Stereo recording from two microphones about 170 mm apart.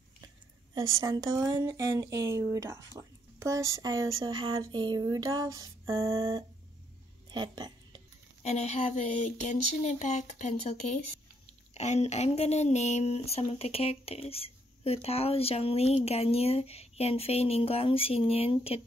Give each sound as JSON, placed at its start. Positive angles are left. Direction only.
{"t": 0.7, "sound": "speech", "side_deg": -20}
{"t": 7.2, "sound": "a sound", "side_deg": -25}
{"t": 8.4, "sound": "speech", "side_deg": 40}